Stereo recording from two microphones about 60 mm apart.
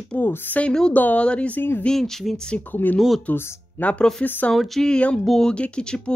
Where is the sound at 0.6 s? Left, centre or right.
Centre.